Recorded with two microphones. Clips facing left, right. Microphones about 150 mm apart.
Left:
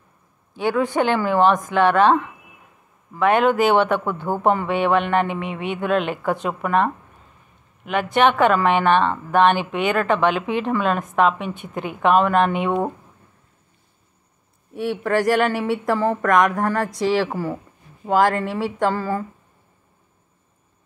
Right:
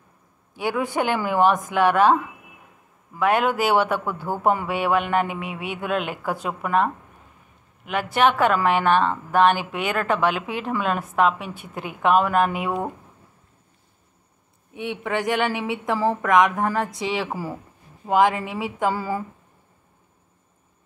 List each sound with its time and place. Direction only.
0.6 s a woman's voice: 10° right (ahead or behind)
14.7 s a woman's voice: centre (ahead or behind)